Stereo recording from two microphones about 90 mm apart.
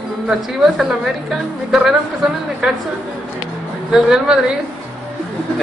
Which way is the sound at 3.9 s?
10° right (ahead or behind).